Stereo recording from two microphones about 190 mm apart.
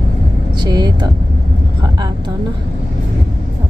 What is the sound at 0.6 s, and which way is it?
Speech, 20° right (ahead or behind).